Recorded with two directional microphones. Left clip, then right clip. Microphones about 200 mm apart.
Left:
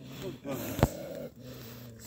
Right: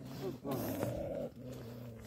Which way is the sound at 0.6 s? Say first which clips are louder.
Left 10 dB; 10° left (ahead or behind).